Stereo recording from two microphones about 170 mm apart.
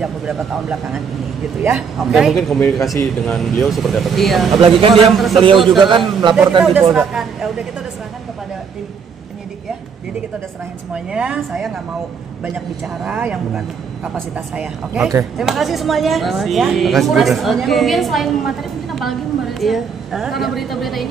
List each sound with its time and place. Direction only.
0.0 s a woman's voice: 5° right (ahead or behind)
2.0 s a woman's voice: centre (ahead or behind)
4.6 s speech: 30° right (ahead or behind)
5.1 s a woman's voice: centre (ahead or behind)
5.9 s a man's voice: 30° right (ahead or behind)
6.6 s a woman's voice: centre (ahead or behind)
11.1 s a woman's voice: 5° right (ahead or behind)